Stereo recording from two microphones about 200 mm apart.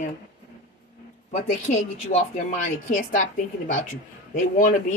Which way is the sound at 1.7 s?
40° left (ahead or behind).